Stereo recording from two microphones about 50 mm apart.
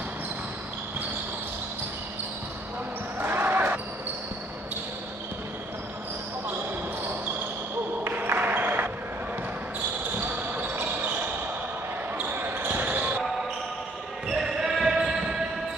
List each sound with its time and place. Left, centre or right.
3.2 s basketball bounce: right
8.0 s a sound: right
10.3 s basketball bounce: right
14.2 s basketball bounce: centre